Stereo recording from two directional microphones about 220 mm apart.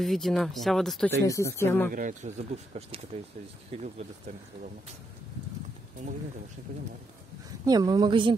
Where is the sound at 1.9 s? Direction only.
35° right (ahead or behind).